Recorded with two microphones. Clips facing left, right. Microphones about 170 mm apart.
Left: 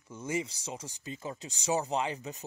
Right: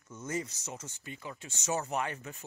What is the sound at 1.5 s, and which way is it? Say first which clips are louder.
Speech: left 3 dB; 10° left (ahead or behind).